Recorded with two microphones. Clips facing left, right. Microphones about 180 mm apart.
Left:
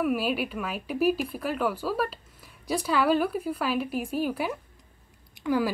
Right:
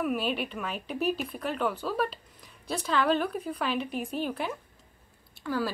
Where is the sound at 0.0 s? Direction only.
5° left (ahead or behind).